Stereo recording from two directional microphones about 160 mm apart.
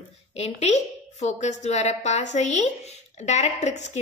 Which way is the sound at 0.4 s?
45° left (ahead or behind).